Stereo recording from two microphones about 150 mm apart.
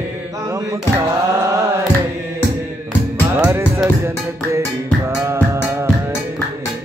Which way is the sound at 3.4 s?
15° right (ahead or behind).